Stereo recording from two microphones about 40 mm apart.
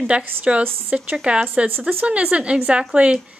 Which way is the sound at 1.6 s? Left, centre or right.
Right.